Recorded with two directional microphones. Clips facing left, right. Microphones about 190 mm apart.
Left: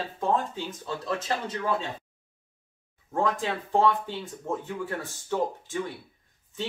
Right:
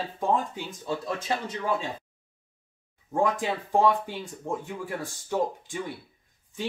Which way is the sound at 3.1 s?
15° right (ahead or behind).